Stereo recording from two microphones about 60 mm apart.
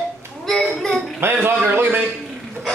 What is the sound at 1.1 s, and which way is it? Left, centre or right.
Speech, right.